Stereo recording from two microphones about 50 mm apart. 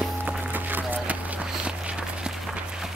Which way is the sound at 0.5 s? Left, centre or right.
Right.